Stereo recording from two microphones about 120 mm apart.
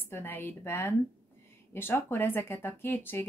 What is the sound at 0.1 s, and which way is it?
Speech, 20° left (ahead or behind).